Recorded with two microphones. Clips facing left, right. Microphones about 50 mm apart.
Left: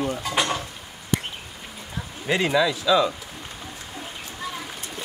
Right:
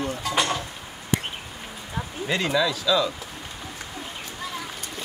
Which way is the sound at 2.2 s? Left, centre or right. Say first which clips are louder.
Left 3 dB; centre.